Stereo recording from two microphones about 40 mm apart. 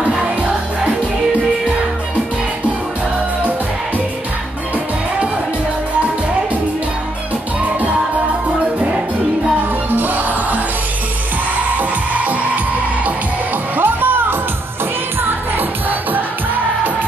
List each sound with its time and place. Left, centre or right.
9.6 s music: right
11.7 s music: right
13.7 s music: right